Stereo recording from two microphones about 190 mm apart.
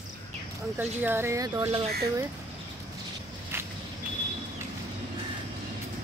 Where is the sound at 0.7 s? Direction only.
10° right (ahead or behind).